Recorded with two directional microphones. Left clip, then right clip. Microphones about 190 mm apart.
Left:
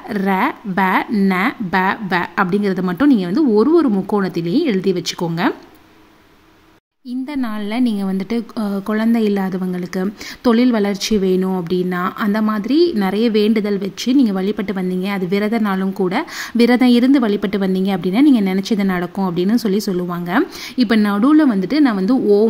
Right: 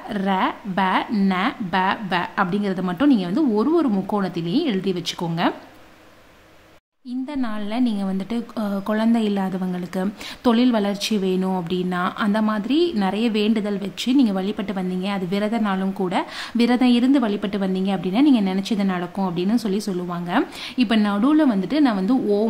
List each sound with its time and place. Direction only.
0.1 s a woman's voice: 20° left (ahead or behind)
7.1 s a woman's voice: 20° left (ahead or behind)